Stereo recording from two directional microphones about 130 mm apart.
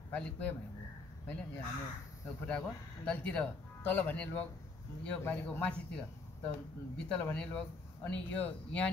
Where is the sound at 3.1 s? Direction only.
10° left (ahead or behind).